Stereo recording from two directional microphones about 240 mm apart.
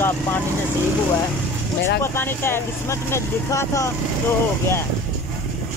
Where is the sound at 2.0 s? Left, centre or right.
Centre.